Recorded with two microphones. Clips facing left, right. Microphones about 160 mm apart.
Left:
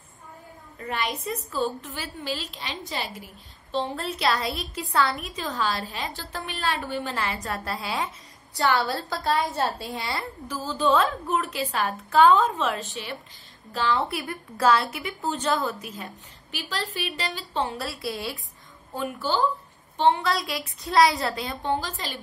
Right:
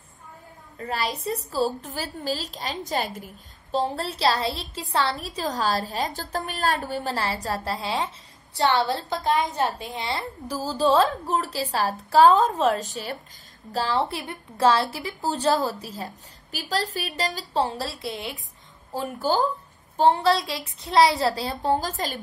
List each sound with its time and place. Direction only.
0.7 s a woman's voice: 35° right (ahead or behind)
10.5 s a woman's voice: 35° right (ahead or behind)
17.8 s a woman's voice: 20° right (ahead or behind)
18.9 s a woman's voice: 40° right (ahead or behind)